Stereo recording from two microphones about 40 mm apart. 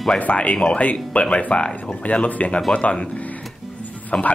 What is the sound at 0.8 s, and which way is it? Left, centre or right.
Speech, left.